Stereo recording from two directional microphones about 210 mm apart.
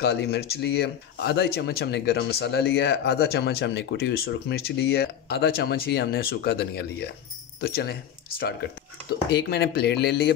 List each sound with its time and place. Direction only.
0.0 s speech: 50° left (ahead or behind)